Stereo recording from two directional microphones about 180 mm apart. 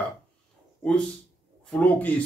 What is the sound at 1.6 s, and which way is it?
Speech, 10° left (ahead or behind).